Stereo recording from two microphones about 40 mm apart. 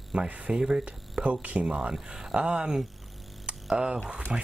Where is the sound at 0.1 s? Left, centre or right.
Right.